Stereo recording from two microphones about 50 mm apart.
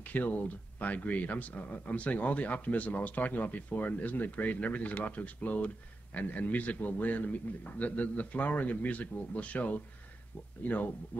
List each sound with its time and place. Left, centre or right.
0.0 s speech: left